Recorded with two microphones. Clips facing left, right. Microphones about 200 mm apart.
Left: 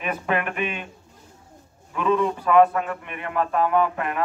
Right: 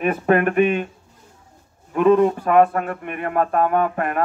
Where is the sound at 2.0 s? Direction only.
50° right (ahead or behind).